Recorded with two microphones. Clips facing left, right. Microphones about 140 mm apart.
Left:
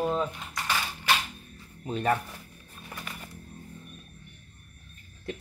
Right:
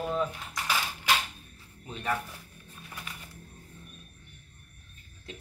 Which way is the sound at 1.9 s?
40° left (ahead or behind).